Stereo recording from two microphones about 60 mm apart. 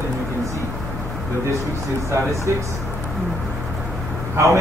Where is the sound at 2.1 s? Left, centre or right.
Right.